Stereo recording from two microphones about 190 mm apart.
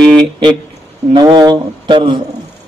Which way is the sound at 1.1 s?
20° right (ahead or behind).